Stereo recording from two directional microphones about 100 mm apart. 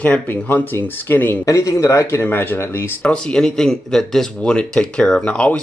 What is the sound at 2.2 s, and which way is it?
Speech, 20° left (ahead or behind).